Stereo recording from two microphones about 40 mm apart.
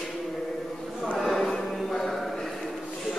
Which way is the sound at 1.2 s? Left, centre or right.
Centre.